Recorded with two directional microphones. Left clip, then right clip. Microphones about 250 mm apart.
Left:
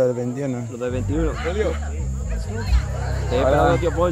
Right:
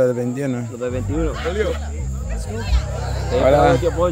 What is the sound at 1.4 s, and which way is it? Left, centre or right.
Speech, right.